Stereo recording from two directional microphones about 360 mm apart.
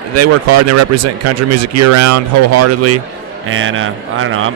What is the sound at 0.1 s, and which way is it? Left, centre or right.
A man's voice, right.